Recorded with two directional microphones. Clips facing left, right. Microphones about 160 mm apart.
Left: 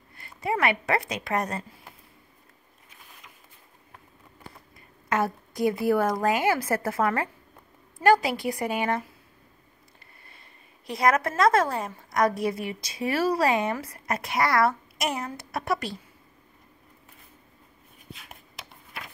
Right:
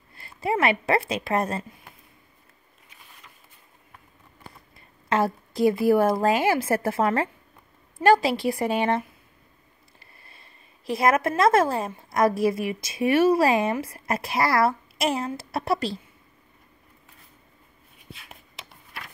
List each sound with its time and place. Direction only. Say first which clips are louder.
0.2 s a woman's voice: right 2 dB; 25° right (ahead or behind)
5.1 s a woman's voice: right 3 dB; 30° right (ahead or behind)
10.9 s speech: right 2 dB; 25° right (ahead or behind)
18.1 s a sound: even; centre (ahead or behind)